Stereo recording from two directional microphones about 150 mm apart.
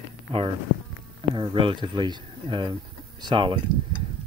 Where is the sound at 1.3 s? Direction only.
35° right (ahead or behind).